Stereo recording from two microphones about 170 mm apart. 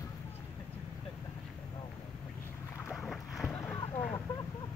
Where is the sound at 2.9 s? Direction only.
Centre (ahead or behind).